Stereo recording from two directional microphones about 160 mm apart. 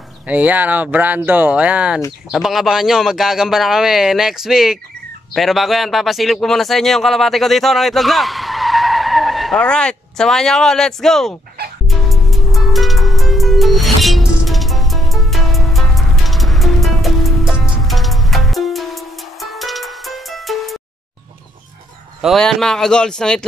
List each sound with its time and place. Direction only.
0.3 s a man's voice: 10° right (ahead or behind)
11.9 s music: centre (ahead or behind)
22.2 s speech: centre (ahead or behind)